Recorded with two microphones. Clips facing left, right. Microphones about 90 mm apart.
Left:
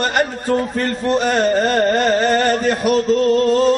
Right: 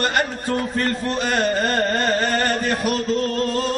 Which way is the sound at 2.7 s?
5° left (ahead or behind).